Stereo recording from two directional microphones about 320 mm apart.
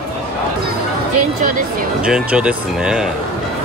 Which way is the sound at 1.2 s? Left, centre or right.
Right.